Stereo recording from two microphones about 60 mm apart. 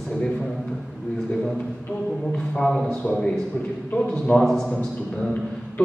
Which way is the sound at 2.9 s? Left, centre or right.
Left.